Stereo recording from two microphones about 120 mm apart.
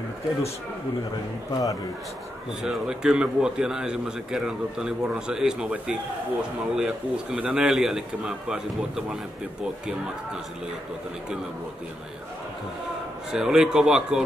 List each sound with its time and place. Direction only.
1.5 s a man's voice: 30° left (ahead or behind)
2.6 s a man's voice: 5° right (ahead or behind)
13.3 s a man's voice: 5° right (ahead or behind)